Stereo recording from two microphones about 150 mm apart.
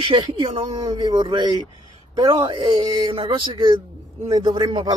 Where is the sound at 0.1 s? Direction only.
35° right (ahead or behind).